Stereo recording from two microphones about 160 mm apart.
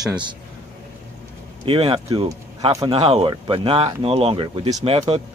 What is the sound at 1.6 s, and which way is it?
Speech, 35° right (ahead or behind).